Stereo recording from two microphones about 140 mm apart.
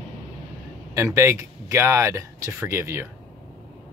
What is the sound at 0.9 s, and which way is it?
Speech, 20° right (ahead or behind).